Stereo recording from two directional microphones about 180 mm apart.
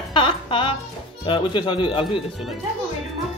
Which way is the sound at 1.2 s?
30° left (ahead or behind).